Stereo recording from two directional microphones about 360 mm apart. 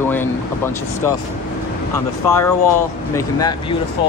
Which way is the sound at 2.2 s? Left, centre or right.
Centre.